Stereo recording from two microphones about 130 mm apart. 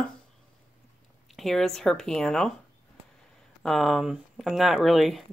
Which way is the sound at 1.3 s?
Centre (ahead or behind).